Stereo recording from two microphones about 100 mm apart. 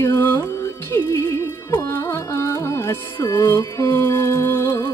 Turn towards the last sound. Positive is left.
turn(degrees=25)  # may be behind; listen again after turning